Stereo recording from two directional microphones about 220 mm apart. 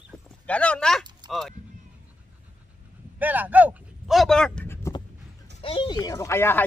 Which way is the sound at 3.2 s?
10° right (ahead or behind).